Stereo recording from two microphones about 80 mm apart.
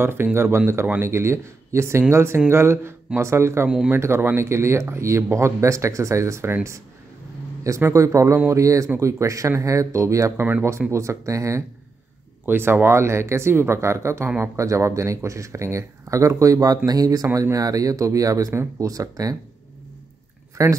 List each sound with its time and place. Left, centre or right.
0.0 s speech: right
3.6 s speech: centre
3.9 s speech: right
7.9 s speech: right
10.4 s speech: right
10.9 s speech: right
12.4 s speech: right
18.5 s speech: right
18.9 s speech: right
20.6 s speech: right